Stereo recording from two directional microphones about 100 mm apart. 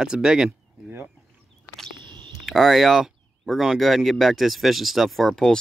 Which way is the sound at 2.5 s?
Centre (ahead or behind).